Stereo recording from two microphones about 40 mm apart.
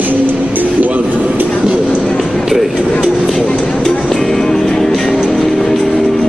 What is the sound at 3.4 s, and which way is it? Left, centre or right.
Vehicle, left.